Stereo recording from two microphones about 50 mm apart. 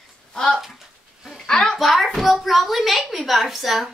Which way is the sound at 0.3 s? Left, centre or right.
Centre.